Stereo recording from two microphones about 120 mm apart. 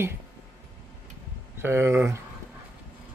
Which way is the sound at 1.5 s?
20° right (ahead or behind).